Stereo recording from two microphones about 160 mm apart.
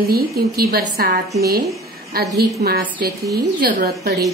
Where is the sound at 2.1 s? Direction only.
85° right.